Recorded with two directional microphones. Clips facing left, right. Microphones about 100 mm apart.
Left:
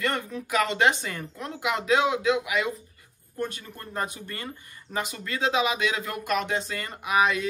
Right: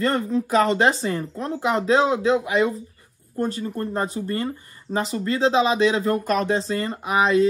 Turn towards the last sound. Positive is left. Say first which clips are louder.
# right 5 dB
turn(degrees=-30)  # may be behind; listen again after turning